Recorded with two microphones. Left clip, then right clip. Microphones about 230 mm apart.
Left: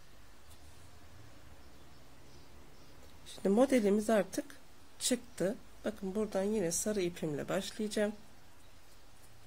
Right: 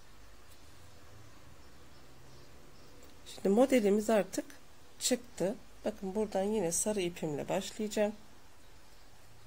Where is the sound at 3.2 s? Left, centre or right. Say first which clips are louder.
Right 2 dB; centre.